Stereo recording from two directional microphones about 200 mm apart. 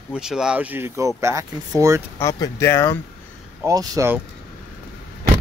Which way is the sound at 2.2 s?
15° left (ahead or behind).